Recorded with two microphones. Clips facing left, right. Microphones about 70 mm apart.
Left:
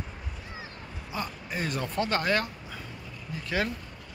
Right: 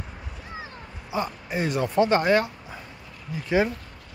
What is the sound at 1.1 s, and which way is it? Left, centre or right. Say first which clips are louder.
Speech: right 6 dB; centre.